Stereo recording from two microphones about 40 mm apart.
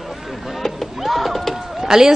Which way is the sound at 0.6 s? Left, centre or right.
Centre.